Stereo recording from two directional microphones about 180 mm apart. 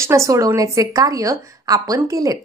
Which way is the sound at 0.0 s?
15° right (ahead or behind).